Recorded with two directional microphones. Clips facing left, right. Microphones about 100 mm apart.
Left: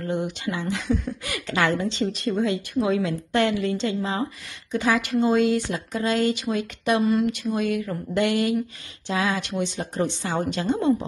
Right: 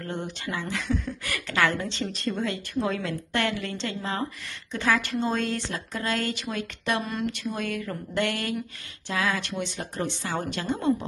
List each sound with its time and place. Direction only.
0.0 s a woman's voice: 15° left (ahead or behind)
0.8 s speech: 45° left (ahead or behind)
1.2 s a woman's voice: 15° left (ahead or behind)